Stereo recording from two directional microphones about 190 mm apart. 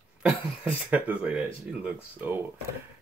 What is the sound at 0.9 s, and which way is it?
Speech, 5° right (ahead or behind).